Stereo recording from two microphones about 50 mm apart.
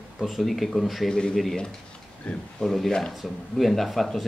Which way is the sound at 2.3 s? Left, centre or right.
Left.